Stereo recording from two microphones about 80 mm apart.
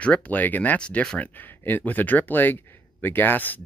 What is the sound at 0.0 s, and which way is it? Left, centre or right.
Speech, centre.